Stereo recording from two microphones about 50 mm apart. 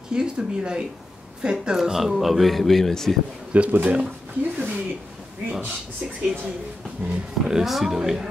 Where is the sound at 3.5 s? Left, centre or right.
Right.